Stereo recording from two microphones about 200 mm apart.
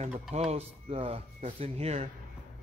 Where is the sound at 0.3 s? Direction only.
30° right (ahead or behind).